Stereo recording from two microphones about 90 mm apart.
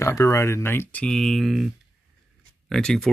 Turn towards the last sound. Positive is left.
turn(degrees=5)  # may be behind; listen again after turning